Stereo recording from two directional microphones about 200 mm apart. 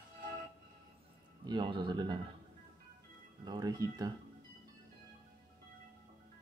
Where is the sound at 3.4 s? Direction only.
20° right (ahead or behind).